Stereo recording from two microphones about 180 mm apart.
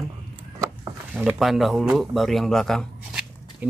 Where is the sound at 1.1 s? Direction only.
5° right (ahead or behind).